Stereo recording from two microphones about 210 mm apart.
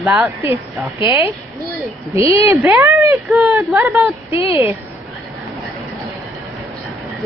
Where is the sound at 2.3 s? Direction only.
15° right (ahead or behind).